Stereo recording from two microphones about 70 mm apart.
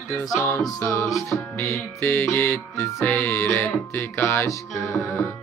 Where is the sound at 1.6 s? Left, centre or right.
Left.